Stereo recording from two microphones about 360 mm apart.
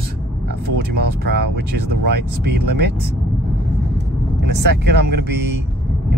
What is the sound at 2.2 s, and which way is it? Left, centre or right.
Speech, right.